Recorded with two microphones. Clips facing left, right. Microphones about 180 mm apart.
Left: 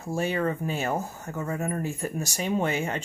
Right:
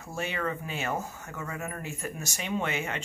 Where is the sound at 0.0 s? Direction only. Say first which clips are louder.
Left 6 dB; 35° left (ahead or behind).